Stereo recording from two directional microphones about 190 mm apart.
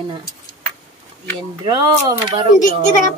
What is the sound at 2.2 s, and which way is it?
Speech, 25° right (ahead or behind).